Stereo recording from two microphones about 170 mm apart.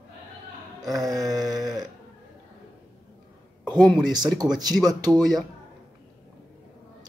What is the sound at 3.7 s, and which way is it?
Speech, centre (ahead or behind).